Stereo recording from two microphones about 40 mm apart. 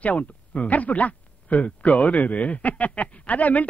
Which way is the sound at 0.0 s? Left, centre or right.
Left.